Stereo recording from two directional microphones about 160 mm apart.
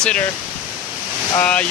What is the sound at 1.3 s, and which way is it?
Speech, 10° left (ahead or behind).